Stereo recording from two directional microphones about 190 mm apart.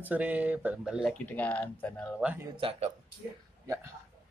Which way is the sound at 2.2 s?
5° right (ahead or behind).